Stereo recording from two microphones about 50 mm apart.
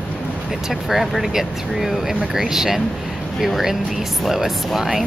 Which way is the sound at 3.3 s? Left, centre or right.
Centre.